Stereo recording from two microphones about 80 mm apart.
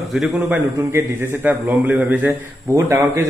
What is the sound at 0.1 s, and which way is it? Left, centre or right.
Speech, centre.